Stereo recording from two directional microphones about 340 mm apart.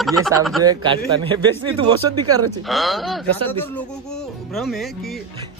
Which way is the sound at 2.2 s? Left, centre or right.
Right.